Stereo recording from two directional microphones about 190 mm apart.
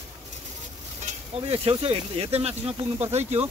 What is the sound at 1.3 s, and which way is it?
Speech, 30° right (ahead or behind).